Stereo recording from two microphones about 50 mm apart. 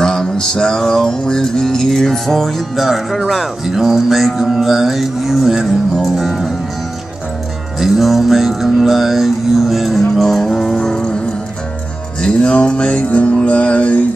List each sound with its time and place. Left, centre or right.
0.0 s music: centre
7.8 s music: centre
12.2 s mantra: centre